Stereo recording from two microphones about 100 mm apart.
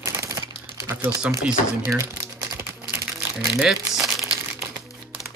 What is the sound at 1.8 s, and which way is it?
Speech, 30° right (ahead or behind).